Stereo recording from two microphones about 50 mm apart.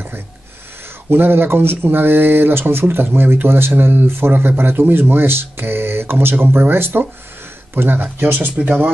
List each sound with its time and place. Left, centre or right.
1.1 s speech: right